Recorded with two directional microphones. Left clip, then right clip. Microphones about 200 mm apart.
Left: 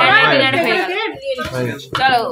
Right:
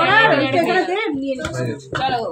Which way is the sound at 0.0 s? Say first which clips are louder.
Left 3 dB; centre (ahead or behind).